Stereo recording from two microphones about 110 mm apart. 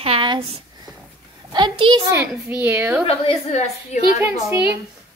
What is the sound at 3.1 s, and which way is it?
Speech, 75° left (ahead or behind).